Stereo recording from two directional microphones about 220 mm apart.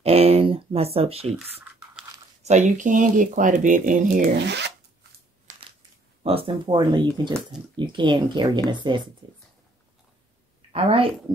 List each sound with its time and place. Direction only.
0.0 s speech: 25° right (ahead or behind)
1.4 s a sound: 5° right (ahead or behind)
2.4 s speech: 30° right (ahead or behind)
4.5 s shuffling cards: 50° right (ahead or behind)
5.5 s a sound: 25° right (ahead or behind)
7.7 s speech: 20° right (ahead or behind)
10.7 s a woman's voice: 25° right (ahead or behind)